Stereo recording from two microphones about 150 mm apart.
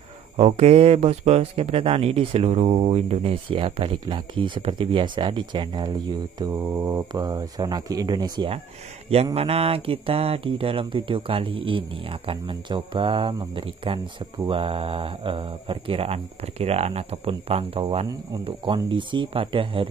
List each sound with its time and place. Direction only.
0.4 s speech: 45° right (ahead or behind)
9.1 s speech: 40° right (ahead or behind)